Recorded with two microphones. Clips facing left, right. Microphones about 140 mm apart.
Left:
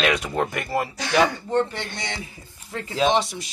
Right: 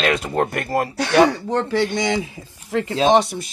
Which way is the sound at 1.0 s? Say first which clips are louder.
Right 7 dB; 65° right (ahead or behind).